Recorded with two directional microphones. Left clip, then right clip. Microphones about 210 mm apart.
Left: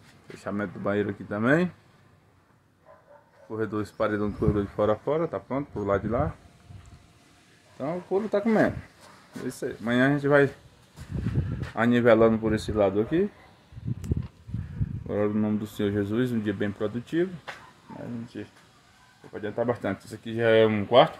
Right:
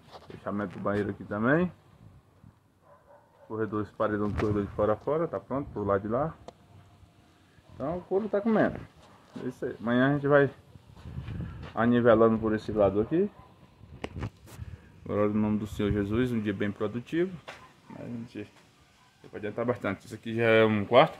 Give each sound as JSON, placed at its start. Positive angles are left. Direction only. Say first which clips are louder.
{"t": 0.4, "sound": "speech", "louder": "left 2 dB", "side_deg": 15}
{"t": 3.4, "sound": "speech", "louder": "left 2 dB", "side_deg": 10}
{"t": 7.7, "sound": "speech", "louder": "left 2 dB", "side_deg": 15}
{"t": 11.7, "sound": "speech", "louder": "left 2 dB", "side_deg": 10}
{"t": 15.0, "sound": "speech", "louder": "left 1 dB", "side_deg": -5}
{"t": 18.3, "sound": "speech", "louder": "left 2 dB", "side_deg": 10}
{"t": 20.3, "sound": "speech", "louder": "left 2 dB", "side_deg": -5}